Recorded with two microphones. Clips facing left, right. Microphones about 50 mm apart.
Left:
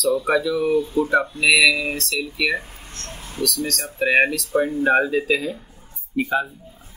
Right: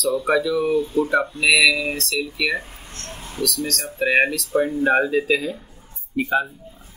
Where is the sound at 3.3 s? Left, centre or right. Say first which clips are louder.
Even; centre.